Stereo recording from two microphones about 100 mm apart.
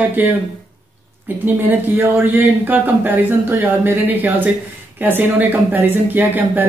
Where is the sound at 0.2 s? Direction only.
20° right (ahead or behind).